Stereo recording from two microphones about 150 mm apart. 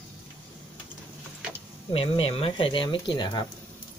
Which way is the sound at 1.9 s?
40° left (ahead or behind).